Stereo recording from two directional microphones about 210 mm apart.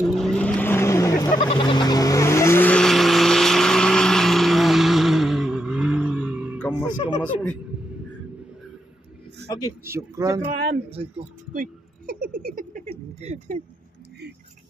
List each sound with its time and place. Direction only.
0.0 s vehicle: centre (ahead or behind)
9.5 s speech: 15° left (ahead or behind)
9.8 s speech: 15° right (ahead or behind)
10.4 s speech: 25° right (ahead or behind)
11.5 s speech: 40° right (ahead or behind)